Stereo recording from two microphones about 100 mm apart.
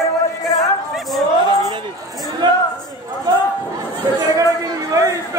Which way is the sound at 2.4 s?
45° right (ahead or behind).